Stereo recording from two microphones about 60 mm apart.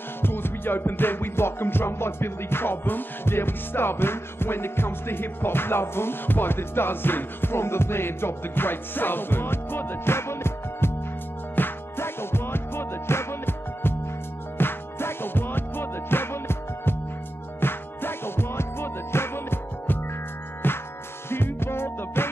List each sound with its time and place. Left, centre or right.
0.2 s music: left